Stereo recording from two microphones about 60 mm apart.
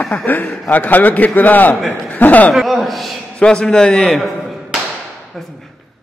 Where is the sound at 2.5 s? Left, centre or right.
Centre.